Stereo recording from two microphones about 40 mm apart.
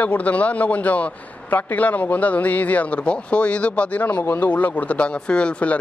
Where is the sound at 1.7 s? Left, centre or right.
Left.